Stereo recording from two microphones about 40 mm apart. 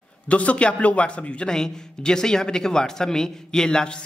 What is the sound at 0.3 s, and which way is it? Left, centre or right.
Speech, left.